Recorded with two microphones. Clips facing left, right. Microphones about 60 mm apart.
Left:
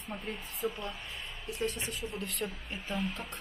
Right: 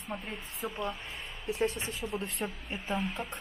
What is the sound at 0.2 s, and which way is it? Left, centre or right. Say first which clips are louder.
Speech: left 2 dB; right.